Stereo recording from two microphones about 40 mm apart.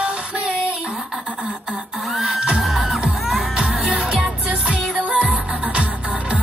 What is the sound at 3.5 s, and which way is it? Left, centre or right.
Music, right.